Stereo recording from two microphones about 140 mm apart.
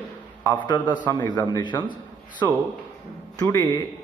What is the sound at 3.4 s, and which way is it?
Speech, 25° left (ahead or behind).